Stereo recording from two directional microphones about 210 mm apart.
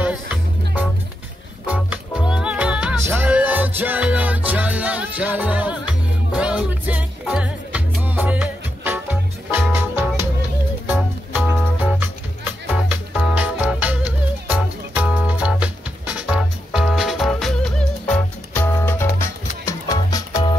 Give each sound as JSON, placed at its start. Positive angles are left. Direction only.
{"t": 0.0, "sound": "music", "side_deg": -5}